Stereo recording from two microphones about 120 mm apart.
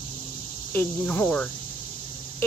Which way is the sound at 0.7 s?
15° left (ahead or behind).